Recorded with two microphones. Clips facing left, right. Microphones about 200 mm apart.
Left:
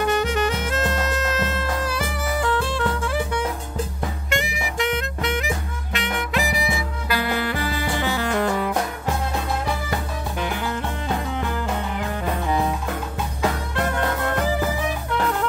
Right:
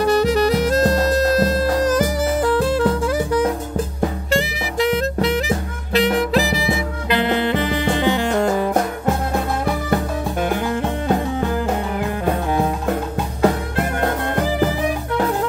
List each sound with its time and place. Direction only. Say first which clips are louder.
0.0 s music: right 6 dB; 35° right (ahead or behind)
4.3 s music: right 5 dB; 35° right (ahead or behind)
9.0 s music: right 5 dB; 50° right (ahead or behind)
13.4 s music: right 6 dB; 40° right (ahead or behind)